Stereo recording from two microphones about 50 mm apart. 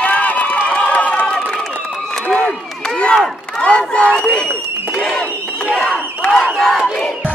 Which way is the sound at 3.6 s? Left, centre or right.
Left.